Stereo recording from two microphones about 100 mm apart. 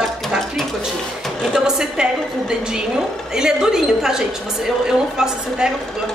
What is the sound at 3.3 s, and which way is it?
A woman's voice, 5° right (ahead or behind).